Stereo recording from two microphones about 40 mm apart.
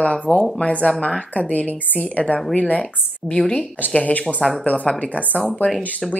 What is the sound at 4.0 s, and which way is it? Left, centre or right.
A woman's voice, left.